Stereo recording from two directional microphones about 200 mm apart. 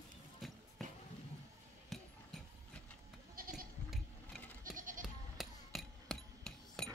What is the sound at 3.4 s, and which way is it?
Goat, 45° right (ahead or behind).